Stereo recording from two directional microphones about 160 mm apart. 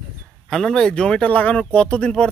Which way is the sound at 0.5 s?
5° left (ahead or behind).